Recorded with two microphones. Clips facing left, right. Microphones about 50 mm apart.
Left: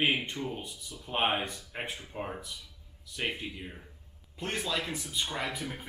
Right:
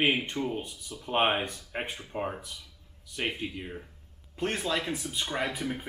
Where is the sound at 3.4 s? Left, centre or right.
Centre.